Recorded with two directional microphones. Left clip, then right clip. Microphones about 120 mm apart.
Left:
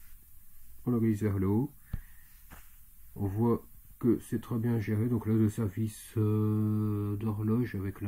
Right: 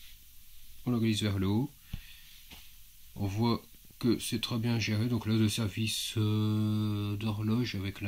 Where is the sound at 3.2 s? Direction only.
45° right (ahead or behind).